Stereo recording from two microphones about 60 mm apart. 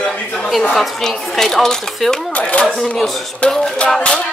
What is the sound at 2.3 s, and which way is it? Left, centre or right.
Speech, left.